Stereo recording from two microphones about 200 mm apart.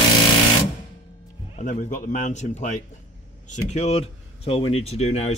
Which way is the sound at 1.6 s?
40° left (ahead or behind).